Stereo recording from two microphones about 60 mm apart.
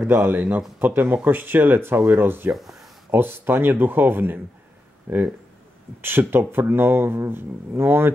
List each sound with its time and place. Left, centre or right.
0.0 s speech: right
0.3 s speech: right